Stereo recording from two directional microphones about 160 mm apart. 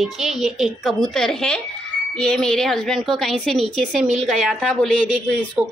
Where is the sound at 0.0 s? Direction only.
Centre (ahead or behind).